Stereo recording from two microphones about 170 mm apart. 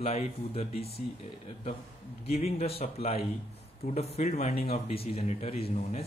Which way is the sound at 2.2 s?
35° left (ahead or behind).